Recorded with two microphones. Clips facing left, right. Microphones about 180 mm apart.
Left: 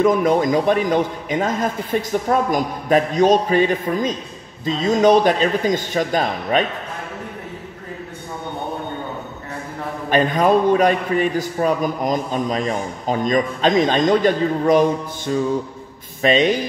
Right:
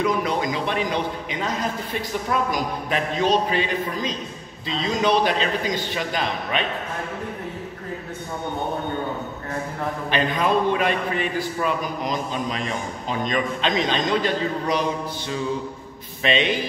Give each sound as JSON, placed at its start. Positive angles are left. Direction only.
{"t": 0.0, "sound": "a man's voice", "side_deg": 45}
{"t": 10.0, "sound": "a man's voice", "side_deg": 45}